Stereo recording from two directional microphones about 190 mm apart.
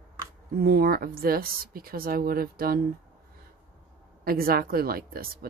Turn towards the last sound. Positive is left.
turn(degrees=-50)  # may be behind; listen again after turning